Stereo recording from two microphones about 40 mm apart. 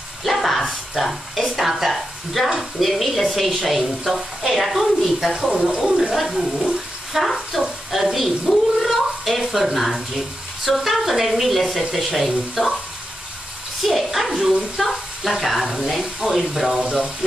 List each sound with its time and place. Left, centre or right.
0.2 s a sound: centre
1.9 s speech: centre
13.8 s speech: centre